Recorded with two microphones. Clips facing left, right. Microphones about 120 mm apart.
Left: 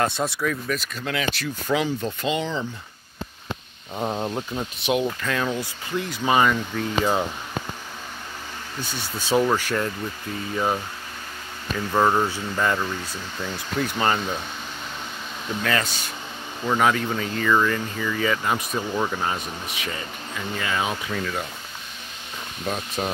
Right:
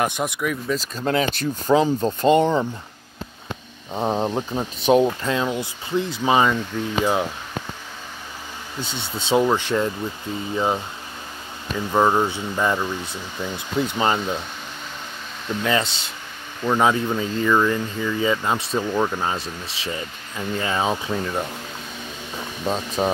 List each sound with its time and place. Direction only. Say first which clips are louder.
0.0 s speech: right 1 dB; 15° right (ahead or behind)
0.7 s speech: right 6 dB; 35° right (ahead or behind)
3.9 s speech: right 4 dB; 25° right (ahead or behind); by 7.2 s 10° right (ahead or behind)
8.8 s speech: right 2 dB; 25° right (ahead or behind)
15.6 s speech: right 3 dB; 20° right (ahead or behind)
19.3 s speech: right 1 dB; 30° right (ahead or behind)
22.7 s speech: right 5 dB; 30° right (ahead or behind)